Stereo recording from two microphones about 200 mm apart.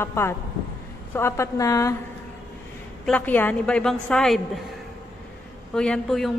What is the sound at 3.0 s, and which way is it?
A woman's voice, 5° left (ahead or behind).